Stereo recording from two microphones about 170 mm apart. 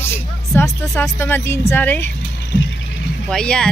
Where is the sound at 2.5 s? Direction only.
90° left.